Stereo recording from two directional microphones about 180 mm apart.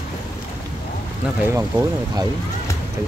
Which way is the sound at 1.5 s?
15° right (ahead or behind).